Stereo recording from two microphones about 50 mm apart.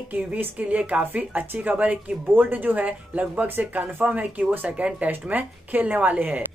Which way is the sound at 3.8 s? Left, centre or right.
Right.